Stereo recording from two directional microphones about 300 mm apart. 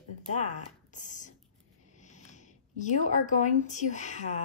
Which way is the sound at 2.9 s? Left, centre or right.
Left.